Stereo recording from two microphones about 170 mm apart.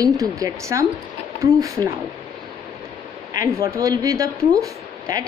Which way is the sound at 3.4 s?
15° right (ahead or behind).